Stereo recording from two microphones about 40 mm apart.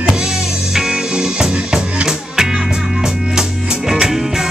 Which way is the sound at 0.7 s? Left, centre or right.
Centre.